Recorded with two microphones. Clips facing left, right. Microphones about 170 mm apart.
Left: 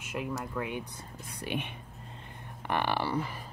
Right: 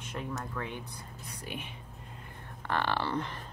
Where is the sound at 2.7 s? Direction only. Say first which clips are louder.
Left 1 dB; 15° left (ahead or behind).